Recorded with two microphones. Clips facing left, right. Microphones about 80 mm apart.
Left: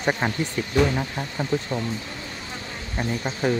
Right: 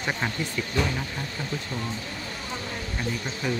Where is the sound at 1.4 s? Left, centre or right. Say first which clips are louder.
Left 9 dB; left.